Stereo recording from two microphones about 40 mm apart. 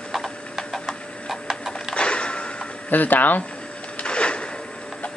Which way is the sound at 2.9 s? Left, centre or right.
Left.